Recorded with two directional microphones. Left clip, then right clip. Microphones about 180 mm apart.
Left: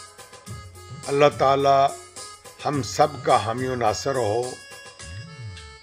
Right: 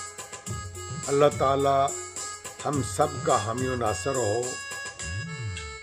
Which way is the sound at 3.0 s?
5° right (ahead or behind).